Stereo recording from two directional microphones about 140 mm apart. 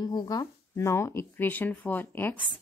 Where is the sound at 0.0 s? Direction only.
30° left (ahead or behind).